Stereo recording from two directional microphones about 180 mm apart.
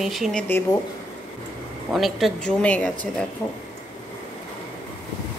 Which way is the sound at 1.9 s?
Centre (ahead or behind).